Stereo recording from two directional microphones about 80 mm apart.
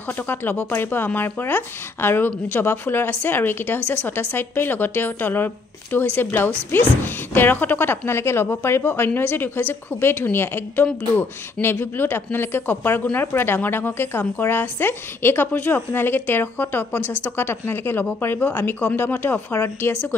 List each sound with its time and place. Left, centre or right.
0.3 s a woman's voice: left
19.9 s a woman's voice: centre